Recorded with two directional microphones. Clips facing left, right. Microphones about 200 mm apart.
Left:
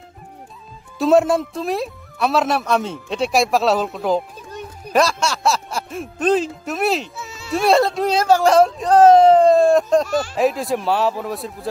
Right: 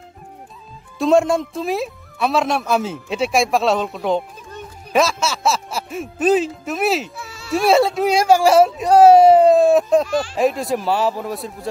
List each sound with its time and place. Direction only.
0.9 s speech: 5° left (ahead or behind)
7.2 s a sound: 20° left (ahead or behind)
7.5 s speech: 5° right (ahead or behind)